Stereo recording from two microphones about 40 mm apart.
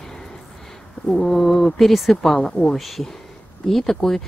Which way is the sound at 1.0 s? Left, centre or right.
Centre.